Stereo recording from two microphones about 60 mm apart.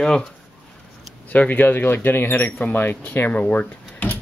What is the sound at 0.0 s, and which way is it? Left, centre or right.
Speech, centre.